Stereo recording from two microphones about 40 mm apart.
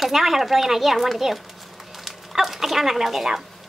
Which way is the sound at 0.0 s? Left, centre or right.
Centre.